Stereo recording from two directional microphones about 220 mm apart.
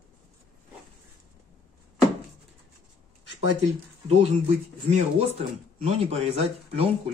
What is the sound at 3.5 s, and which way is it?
Speech, 30° right (ahead or behind).